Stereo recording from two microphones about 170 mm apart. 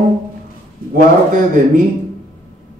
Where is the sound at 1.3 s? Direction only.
50° right (ahead or behind).